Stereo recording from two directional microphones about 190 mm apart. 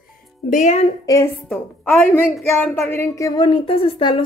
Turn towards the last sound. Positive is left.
turn(degrees=25)  # may be behind; listen again after turning